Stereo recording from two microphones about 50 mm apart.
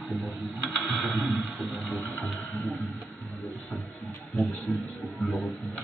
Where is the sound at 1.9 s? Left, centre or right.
Left.